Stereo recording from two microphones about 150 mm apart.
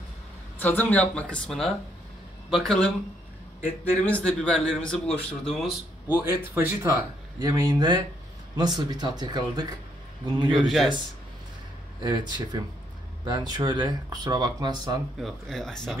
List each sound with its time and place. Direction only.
0.6 s a man's voice: 10° left (ahead or behind)
4.0 s a man's voice: 10° left (ahead or behind)
6.0 s speech: 15° right (ahead or behind)
7.3 s speech: 25° right (ahead or behind)
12.0 s speech: 30° right (ahead or behind)
15.1 s a man's voice: centre (ahead or behind)